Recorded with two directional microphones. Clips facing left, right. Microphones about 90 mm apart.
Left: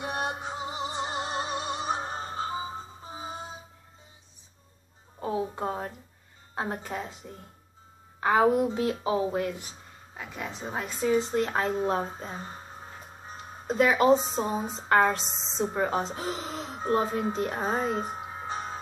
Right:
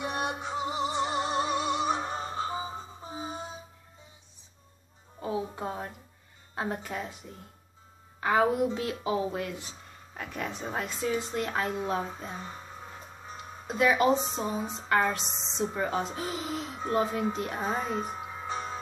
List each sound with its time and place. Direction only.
0.0 s music: 30° left (ahead or behind)
0.7 s music: 25° right (ahead or behind)
1.0 s music: 30° left (ahead or behind)
3.1 s music: 25° left (ahead or behind)
5.2 s music: 35° left (ahead or behind)
6.5 s speech: 30° left (ahead or behind)
8.2 s a woman's voice: 30° left (ahead or behind)
10.1 s speech: 15° left (ahead or behind)
11.1 s a woman's voice: 30° left (ahead or behind)